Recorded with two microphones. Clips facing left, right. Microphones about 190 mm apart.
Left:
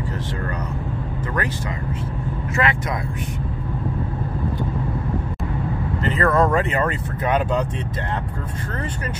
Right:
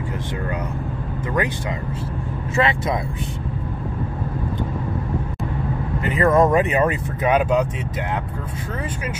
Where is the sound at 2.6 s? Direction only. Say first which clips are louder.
Right 2 dB; 25° right (ahead or behind).